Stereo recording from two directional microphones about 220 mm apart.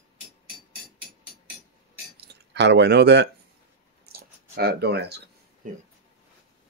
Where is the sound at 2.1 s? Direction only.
50° right (ahead or behind).